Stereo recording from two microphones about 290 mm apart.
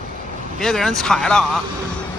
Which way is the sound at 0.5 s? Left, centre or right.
Centre.